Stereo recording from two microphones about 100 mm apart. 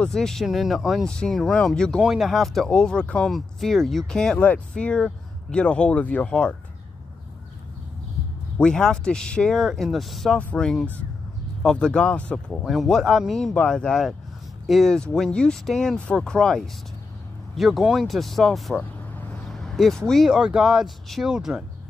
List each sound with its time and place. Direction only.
0.0 s speech: 5° left (ahead or behind)
1.0 s speech: 10° left (ahead or behind)
8.5 s speech: 10° left (ahead or behind)
18.8 s vehicle: 15° left (ahead or behind)
19.4 s vehicle: 5° left (ahead or behind)
20.1 s speech: 5° right (ahead or behind)